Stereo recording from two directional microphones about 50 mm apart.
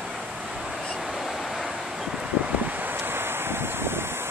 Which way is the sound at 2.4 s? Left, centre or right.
Right.